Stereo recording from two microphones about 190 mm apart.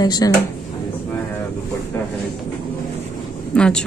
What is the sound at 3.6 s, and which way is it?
Speech, 5° left (ahead or behind).